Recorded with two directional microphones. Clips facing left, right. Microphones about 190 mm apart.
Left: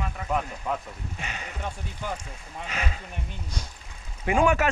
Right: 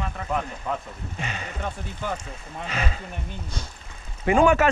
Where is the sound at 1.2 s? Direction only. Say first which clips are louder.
Right 6 dB; 30° right (ahead or behind).